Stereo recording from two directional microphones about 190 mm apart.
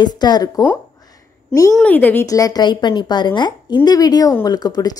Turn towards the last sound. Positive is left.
turn(degrees=20)  # may be behind; listen again after turning